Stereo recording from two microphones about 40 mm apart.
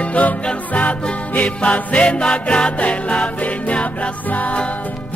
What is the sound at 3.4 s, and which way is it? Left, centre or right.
Music, left.